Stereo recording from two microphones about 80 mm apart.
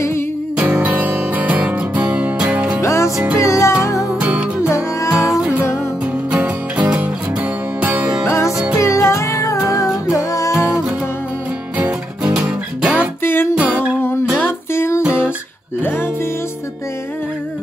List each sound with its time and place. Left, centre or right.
0.6 s music: centre
2.8 s music: left
4.1 s music: centre
8.3 s music: left
10.5 s music: centre
11.8 s music: centre
13.2 s music: left
13.6 s music: centre
14.4 s music: left
15.0 s guitar: centre